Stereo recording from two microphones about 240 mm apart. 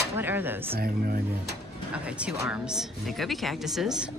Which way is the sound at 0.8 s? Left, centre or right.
Right.